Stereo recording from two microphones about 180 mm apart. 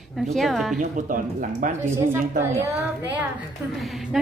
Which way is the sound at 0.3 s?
Centre (ahead or behind).